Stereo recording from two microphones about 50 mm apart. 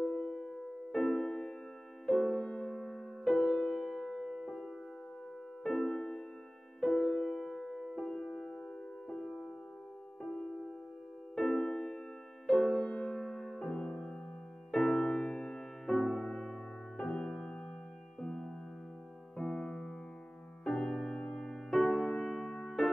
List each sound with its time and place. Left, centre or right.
0.0 s music: centre
5.6 s music: centre